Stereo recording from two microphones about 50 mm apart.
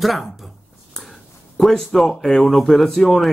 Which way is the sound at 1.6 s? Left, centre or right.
Centre.